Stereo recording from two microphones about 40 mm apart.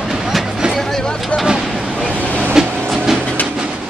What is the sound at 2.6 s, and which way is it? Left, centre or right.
Train, centre.